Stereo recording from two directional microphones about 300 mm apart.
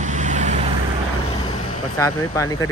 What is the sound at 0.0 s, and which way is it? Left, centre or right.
Vehicle, right.